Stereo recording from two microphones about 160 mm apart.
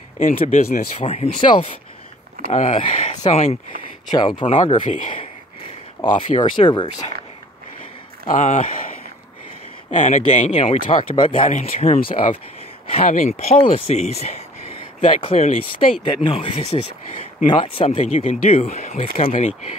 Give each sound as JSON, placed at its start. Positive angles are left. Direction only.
{"t": 0.2, "sound": "speech", "side_deg": 55}
{"t": 0.9, "sound": "speech", "side_deg": 40}
{"t": 2.4, "sound": "speech", "side_deg": 50}
{"t": 4.1, "sound": "speech", "side_deg": 30}
{"t": 6.0, "sound": "speech", "side_deg": 20}
{"t": 8.3, "sound": "speech", "side_deg": 50}